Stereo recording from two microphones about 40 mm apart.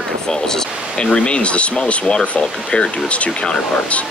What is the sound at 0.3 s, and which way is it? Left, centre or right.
Speech, centre.